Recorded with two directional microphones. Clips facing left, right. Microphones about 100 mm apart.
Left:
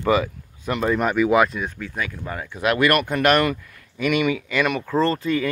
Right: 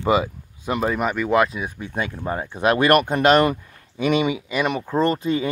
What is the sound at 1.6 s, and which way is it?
Speech, 20° right (ahead or behind).